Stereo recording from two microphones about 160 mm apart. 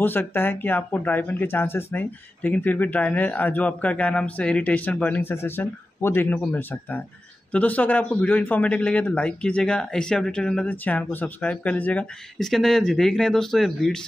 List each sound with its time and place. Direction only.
0.0 s speech: 15° left (ahead or behind)